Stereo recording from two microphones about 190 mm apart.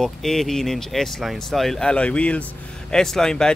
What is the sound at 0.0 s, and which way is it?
Speech, centre (ahead or behind).